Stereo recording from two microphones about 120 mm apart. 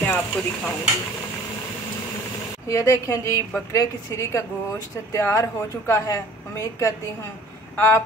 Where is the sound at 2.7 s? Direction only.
25° left (ahead or behind).